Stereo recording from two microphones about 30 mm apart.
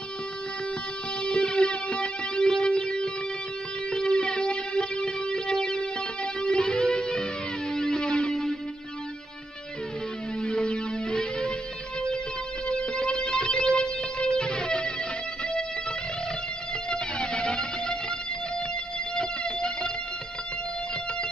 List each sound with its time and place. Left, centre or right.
1.2 s music: left
4.1 s music: left
10.4 s music: left
12.6 s music: left
16.9 s music: left
19.1 s music: left